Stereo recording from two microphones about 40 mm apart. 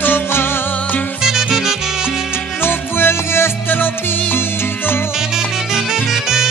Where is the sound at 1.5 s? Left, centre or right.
Centre.